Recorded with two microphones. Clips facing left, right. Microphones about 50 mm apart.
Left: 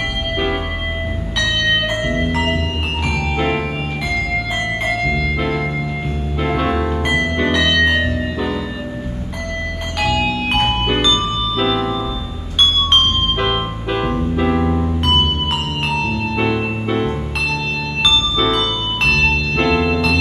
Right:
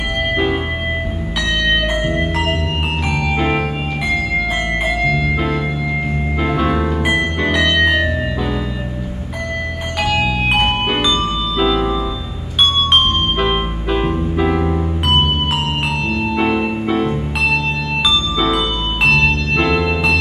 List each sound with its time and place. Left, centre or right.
3.3 s music: centre
4.8 s music: centre
9.9 s music: centre
10.2 s music: centre
16.8 s music: centre
18.4 s music: centre